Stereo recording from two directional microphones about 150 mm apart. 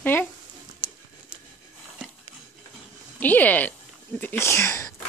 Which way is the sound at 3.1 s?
10° left (ahead or behind).